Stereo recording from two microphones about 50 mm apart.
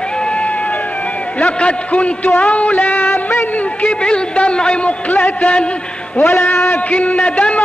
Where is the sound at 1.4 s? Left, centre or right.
Left.